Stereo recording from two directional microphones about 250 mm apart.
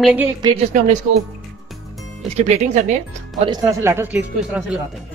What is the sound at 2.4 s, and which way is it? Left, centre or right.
Speech, right.